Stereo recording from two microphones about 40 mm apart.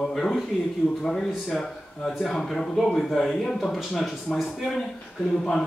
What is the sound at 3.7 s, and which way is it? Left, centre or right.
Speech, centre.